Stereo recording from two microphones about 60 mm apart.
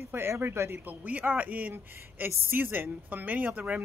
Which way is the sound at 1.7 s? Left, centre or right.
Right.